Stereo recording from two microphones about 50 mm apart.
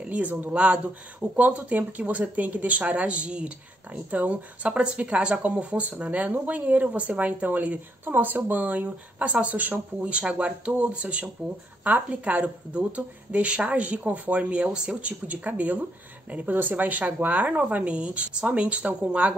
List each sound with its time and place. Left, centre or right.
0.0 s speech: right
0.5 s speech: right
15.0 s speech: right